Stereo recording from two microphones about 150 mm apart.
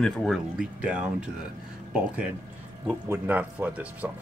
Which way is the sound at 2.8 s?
15° right (ahead or behind).